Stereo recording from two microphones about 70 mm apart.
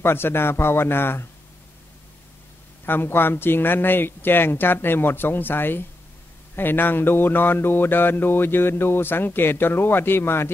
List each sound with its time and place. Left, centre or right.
0.0 s mantra: left
2.8 s mantra: left